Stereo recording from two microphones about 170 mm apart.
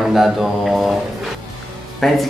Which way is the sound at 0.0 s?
Centre (ahead or behind).